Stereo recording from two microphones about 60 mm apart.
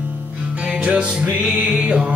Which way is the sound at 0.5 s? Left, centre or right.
Right.